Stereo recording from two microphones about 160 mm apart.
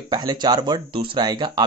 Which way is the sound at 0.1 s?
25° right (ahead or behind).